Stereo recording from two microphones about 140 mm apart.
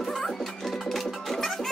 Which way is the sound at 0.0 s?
Centre (ahead or behind).